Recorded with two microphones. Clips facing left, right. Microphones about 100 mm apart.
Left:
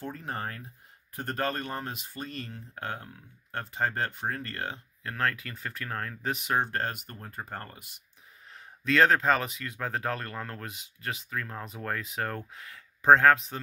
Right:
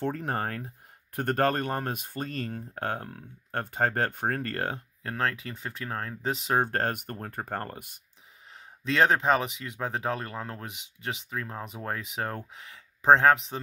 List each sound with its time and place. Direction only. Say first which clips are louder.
0.0 s speech: right 6 dB; 60° right (ahead or behind)
5.0 s speech: right 1 dB; 30° right (ahead or behind)
6.6 s speech: right 3 dB; 45° right (ahead or behind)
8.5 s speech: left 1 dB; 25° right (ahead or behind)